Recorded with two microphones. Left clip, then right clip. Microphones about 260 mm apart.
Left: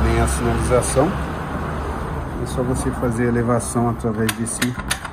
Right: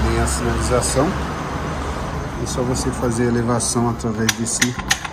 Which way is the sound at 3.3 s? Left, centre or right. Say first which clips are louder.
Even; centre.